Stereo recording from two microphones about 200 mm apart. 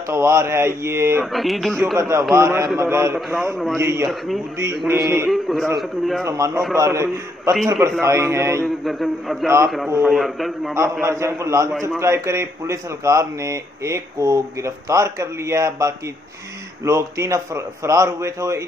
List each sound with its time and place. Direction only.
0.1 s a man's voice: 15° right (ahead or behind)
1.2 s a man's voice: centre (ahead or behind)
2.0 s a man's voice: 15° right (ahead or behind)
5.2 s a man's voice: centre (ahead or behind)
6.2 s a man's voice: 15° right (ahead or behind)
8.8 s a man's voice: centre (ahead or behind)
9.8 s a man's voice: 15° right (ahead or behind)
10.1 s a man's voice: centre (ahead or behind)
10.7 s a man's voice: 15° right (ahead or behind)